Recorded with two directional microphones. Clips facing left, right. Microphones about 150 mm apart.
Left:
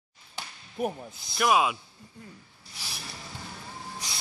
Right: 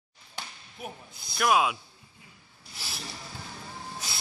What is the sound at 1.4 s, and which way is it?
Speech, centre (ahead or behind).